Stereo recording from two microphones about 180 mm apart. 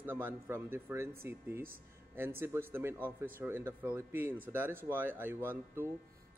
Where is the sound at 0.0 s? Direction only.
10° right (ahead or behind).